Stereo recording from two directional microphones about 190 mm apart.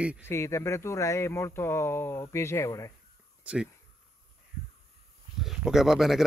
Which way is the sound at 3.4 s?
5° right (ahead or behind).